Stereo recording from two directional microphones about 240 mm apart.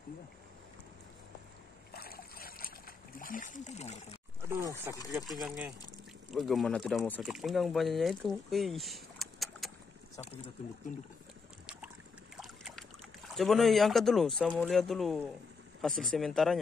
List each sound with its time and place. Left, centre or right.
1.9 s boat: left
3.2 s splash: left
4.4 s a sound: centre
5.1 s speech: centre
12.4 s boat: centre
13.3 s speech: centre